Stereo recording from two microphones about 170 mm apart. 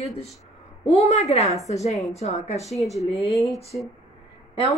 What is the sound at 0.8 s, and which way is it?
A woman's voice, 40° left (ahead or behind).